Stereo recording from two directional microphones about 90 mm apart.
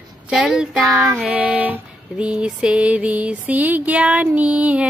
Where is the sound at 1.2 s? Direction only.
15° right (ahead or behind).